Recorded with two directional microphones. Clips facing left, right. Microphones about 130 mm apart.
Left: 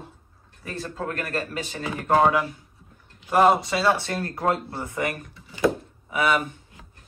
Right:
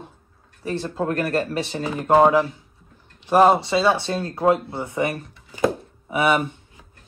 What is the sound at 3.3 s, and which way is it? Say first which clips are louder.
Speech: right 3 dB; 25° right (ahead or behind).